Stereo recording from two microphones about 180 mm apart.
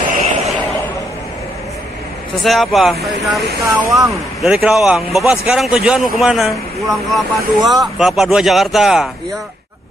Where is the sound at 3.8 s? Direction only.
15° right (ahead or behind).